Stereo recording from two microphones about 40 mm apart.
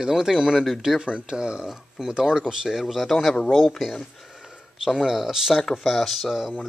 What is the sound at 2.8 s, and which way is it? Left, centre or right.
Speech, centre.